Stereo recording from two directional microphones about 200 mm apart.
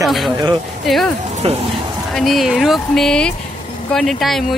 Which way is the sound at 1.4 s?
30° right (ahead or behind).